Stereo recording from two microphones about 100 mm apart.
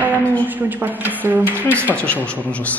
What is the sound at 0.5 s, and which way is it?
Speech, 20° right (ahead or behind).